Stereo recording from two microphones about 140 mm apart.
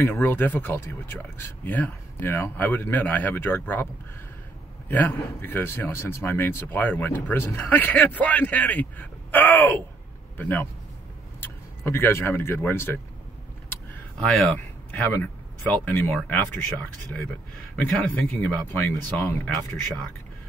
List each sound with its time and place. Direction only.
0.0 s speech: 15° left (ahead or behind)
14.9 s speech: 15° left (ahead or behind)
17.7 s speech: 10° left (ahead or behind)